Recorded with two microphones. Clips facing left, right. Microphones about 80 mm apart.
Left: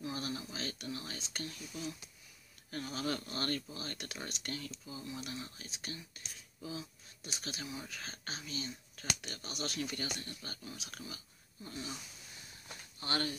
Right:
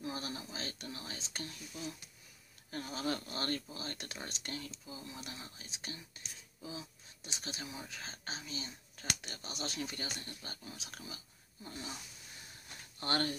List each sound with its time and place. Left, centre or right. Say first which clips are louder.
0.0 s a sound: left 1 dB; right
2.7 s speech: even; right
13.0 s speech: right 2 dB; right